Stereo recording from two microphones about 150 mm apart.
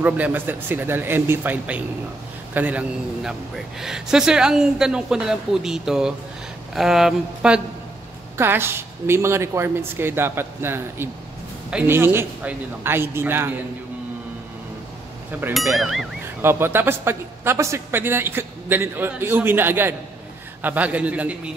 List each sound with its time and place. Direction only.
0.0 s a man's voice: 10° right (ahead or behind)
8.4 s a man's voice: 15° right (ahead or behind)
15.3 s a man's voice: 10° right (ahead or behind)
15.7 s speech: centre (ahead or behind)
16.3 s a man's voice: 15° right (ahead or behind)